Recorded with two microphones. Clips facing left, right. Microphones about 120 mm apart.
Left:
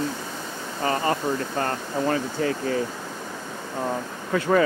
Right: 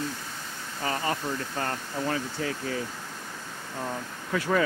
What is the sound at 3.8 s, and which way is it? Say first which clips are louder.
Speech: left 6 dB; 35° left (ahead or behind).